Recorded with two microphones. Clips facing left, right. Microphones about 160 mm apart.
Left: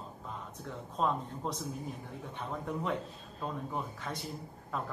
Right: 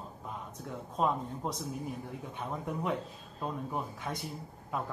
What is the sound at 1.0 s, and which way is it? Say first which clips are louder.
Speech: right 1 dB; 10° right (ahead or behind).